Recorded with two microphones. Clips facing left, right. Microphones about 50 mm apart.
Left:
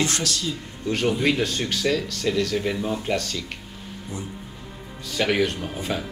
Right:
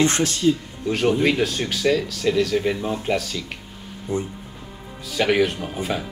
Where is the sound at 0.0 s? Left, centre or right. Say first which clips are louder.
Right 7 dB; right.